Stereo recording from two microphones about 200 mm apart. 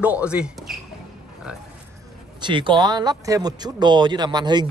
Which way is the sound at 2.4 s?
25° right (ahead or behind).